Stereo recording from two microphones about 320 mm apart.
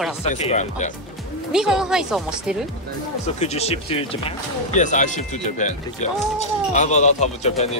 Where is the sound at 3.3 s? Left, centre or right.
Centre.